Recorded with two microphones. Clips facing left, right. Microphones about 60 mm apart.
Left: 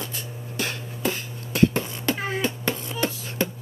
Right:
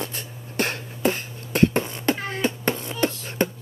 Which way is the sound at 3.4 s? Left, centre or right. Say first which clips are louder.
Right 3 dB; right.